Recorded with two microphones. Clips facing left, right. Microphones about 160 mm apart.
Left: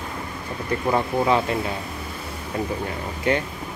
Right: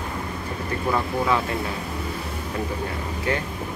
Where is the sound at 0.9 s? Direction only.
25° left (ahead or behind).